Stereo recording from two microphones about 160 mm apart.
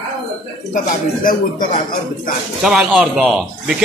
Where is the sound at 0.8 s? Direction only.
60° left (ahead or behind).